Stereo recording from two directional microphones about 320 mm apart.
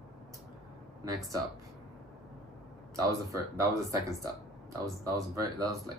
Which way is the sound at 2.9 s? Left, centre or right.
Centre.